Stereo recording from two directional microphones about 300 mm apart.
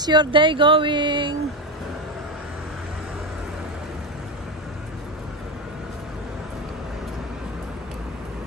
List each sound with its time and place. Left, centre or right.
0.0 s speech: centre